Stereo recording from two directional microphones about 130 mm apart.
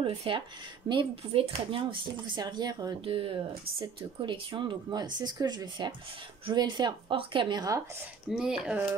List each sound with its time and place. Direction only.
0.0 s speech: 45° right (ahead or behind)
4.3 s speech: 40° right (ahead or behind)
8.3 s speech: 5° right (ahead or behind)